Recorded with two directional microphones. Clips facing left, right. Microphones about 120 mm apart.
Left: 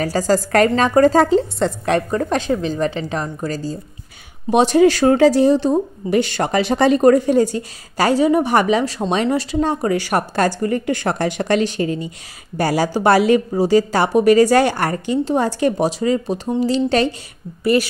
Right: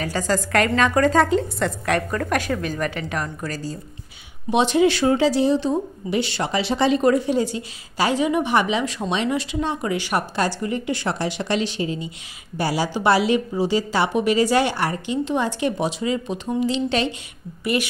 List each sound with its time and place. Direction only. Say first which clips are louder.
0.0 s a woman's voice: left 6 dB; 35° left (ahead or behind)
4.5 s speech: left 5 dB; 45° left (ahead or behind)